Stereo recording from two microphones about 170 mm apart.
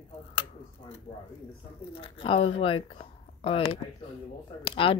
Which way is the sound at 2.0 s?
30° left (ahead or behind).